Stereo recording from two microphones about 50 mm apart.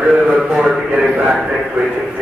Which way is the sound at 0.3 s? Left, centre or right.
Centre.